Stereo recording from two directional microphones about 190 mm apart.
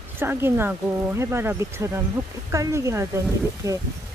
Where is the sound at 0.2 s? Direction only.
10° right (ahead or behind).